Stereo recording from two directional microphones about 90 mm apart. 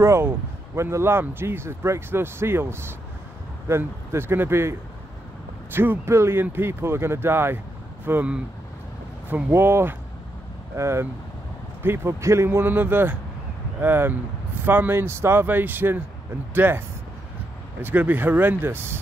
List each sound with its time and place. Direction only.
0.0 s speech: 30° right (ahead or behind)
9.3 s speech: 25° right (ahead or behind)
17.8 s speech: 20° right (ahead or behind)